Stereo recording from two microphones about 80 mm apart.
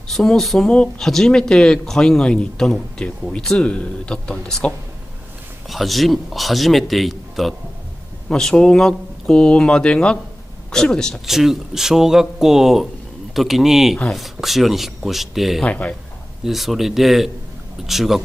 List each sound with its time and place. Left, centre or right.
0.1 s speech: centre
5.7 s a man's voice: centre
11.2 s a man's voice: centre
15.6 s speech: centre
16.4 s a man's voice: centre